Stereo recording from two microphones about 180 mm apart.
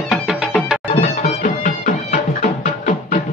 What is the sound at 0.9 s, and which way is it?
Music, 35° left (ahead or behind).